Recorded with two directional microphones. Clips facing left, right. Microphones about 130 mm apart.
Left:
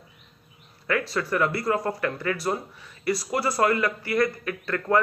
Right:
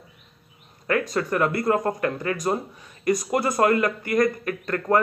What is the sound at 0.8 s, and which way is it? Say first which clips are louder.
A man's voice: right 3 dB; 40° right (ahead or behind).